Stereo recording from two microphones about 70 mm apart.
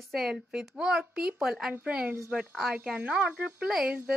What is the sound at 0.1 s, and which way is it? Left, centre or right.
A woman's voice, centre.